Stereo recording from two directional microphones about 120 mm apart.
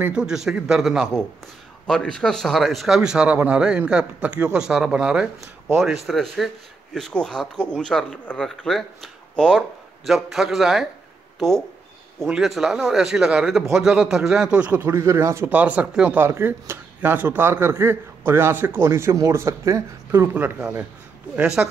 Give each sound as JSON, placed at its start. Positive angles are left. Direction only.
{"t": 0.0, "sound": "a man's voice", "side_deg": -5}
{"t": 14.8, "sound": "speech", "side_deg": -25}
{"t": 15.5, "sound": "a man's voice", "side_deg": -10}